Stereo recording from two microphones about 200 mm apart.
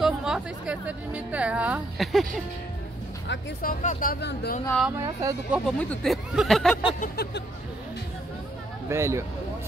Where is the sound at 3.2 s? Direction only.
55° left (ahead or behind).